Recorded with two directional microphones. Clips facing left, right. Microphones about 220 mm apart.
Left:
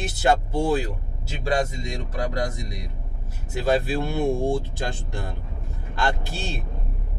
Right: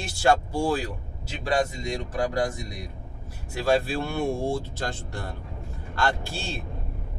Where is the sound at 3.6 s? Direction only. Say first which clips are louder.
Left 1 dB; 20° left (ahead or behind).